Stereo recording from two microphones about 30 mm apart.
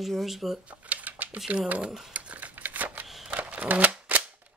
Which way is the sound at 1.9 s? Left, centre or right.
Centre.